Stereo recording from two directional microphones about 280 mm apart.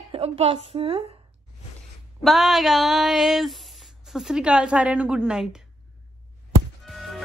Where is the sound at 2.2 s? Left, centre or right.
Centre.